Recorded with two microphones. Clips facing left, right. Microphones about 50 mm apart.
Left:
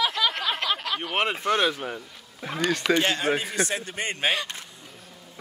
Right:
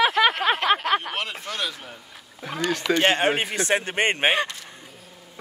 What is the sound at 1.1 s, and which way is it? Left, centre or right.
Speech, left.